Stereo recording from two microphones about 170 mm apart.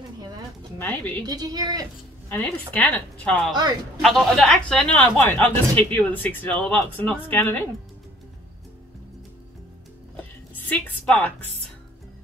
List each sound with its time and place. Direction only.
0.7 s speech: 10° left (ahead or behind)
1.2 s a woman's voice: 25° right (ahead or behind)
2.2 s speech: 10° left (ahead or behind)
10.5 s a woman's voice: 10° left (ahead or behind)